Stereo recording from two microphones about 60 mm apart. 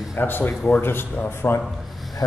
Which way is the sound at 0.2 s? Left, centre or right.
Left.